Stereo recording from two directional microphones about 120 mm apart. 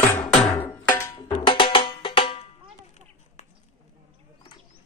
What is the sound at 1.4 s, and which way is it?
Music, 45° left (ahead or behind).